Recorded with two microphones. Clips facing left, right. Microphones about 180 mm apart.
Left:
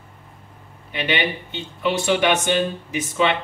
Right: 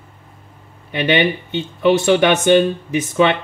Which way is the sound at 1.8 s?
55° right (ahead or behind).